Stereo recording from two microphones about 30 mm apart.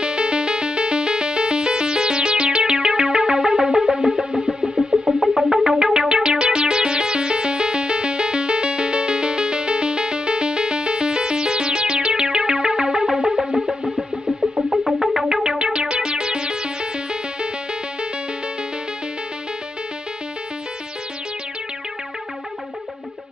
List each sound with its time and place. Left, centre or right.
0.0 s music: right
5.2 s music: centre
14.4 s music: centre
15.1 s music: centre
15.6 s music: right